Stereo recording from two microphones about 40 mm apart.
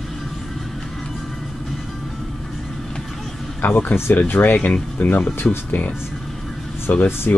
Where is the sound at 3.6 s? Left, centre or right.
Left.